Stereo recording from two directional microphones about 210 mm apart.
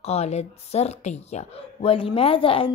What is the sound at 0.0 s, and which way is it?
A woman's voice, 30° left (ahead or behind).